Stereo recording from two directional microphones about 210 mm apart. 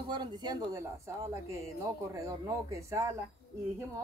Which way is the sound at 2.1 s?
15° right (ahead or behind).